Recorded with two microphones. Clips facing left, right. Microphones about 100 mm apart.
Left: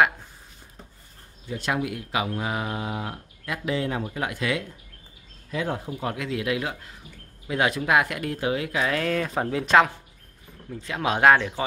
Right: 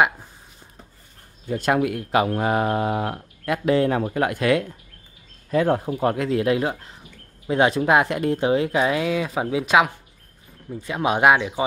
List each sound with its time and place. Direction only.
1.5 s speech: 50° right (ahead or behind)
6.1 s speech: 40° right (ahead or behind)
8.9 s speech: 10° right (ahead or behind)